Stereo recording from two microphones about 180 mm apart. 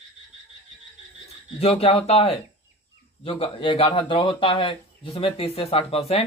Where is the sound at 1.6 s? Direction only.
35° left (ahead or behind).